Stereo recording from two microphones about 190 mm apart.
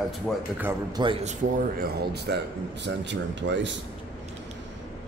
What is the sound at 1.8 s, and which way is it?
Speech, 60° right (ahead or behind).